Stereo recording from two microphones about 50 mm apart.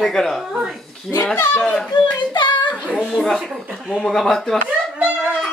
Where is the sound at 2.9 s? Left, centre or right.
Centre.